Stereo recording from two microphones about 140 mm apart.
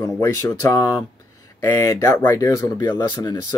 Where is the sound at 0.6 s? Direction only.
25° left (ahead or behind).